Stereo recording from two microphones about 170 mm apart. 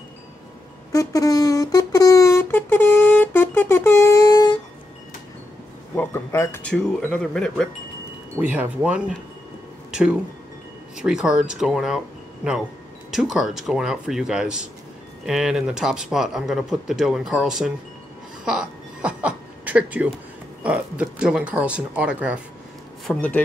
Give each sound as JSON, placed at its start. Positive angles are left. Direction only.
{"t": 0.9, "sound": "a sound", "side_deg": 20}
{"t": 5.9, "sound": "speech", "side_deg": 15}
{"t": 8.4, "sound": "speech", "side_deg": -10}
{"t": 9.8, "sound": "music", "side_deg": -5}
{"t": 11.0, "sound": "speech", "side_deg": -5}
{"t": 13.1, "sound": "speech", "side_deg": 0}
{"t": 18.4, "sound": "chuckle", "side_deg": -5}
{"t": 20.6, "sound": "speech", "side_deg": -10}
{"t": 23.0, "sound": "speech", "side_deg": 10}